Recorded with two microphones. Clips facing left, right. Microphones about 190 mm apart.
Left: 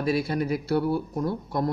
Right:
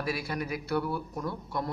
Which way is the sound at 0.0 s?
25° left (ahead or behind).